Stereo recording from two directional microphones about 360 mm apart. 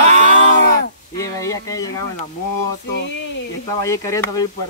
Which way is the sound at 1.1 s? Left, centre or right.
Centre.